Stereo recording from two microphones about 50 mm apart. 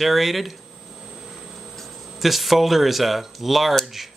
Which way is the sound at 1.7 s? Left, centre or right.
Centre.